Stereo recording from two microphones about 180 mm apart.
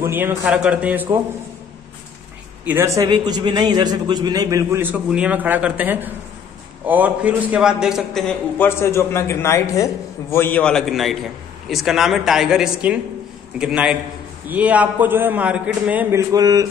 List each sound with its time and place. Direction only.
0.0 s a man's voice: 10° right (ahead or behind)
2.6 s a man's voice: 15° right (ahead or behind)